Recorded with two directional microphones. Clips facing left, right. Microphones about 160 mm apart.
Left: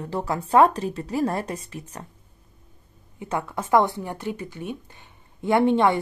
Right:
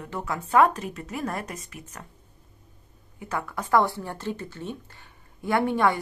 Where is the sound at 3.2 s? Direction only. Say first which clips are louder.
Left 3 dB; 25° left (ahead or behind).